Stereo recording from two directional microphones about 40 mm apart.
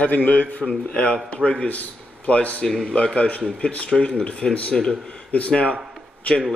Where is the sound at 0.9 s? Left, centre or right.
Left.